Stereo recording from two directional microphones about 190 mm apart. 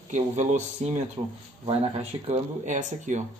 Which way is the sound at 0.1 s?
40° right (ahead or behind).